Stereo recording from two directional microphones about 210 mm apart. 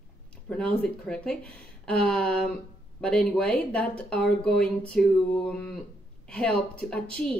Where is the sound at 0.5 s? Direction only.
5° left (ahead or behind).